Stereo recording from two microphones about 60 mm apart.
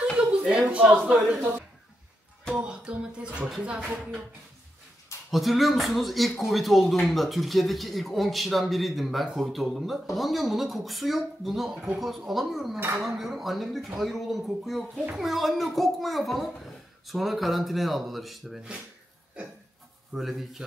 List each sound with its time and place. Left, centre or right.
0.2 s a sound: centre
0.7 s a man's voice: right
2.5 s music: centre
5.3 s speech: centre
20.2 s speech: centre